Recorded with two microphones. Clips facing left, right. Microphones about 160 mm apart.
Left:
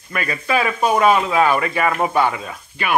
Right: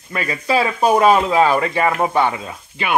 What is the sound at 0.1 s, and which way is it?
Speech, 25° right (ahead or behind).